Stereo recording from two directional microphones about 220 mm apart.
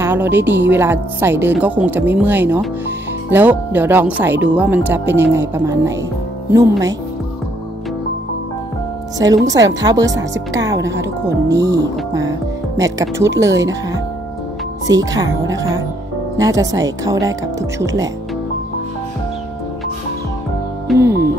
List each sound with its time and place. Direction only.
0.0 s a woman's voice: 10° right (ahead or behind)
9.5 s a woman's voice: 15° right (ahead or behind)
10.8 s speech: 55° right (ahead or behind)
11.2 s a woman's voice: 15° right (ahead or behind)
16.3 s a woman's voice: 15° right (ahead or behind)
21.0 s music: 45° right (ahead or behind)